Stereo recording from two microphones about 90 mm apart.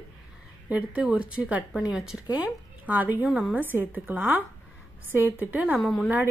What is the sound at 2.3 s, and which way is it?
A woman's voice, 15° right (ahead or behind).